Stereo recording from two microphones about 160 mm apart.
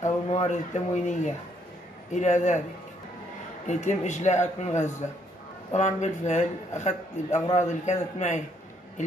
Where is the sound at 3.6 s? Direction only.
50° left (ahead or behind).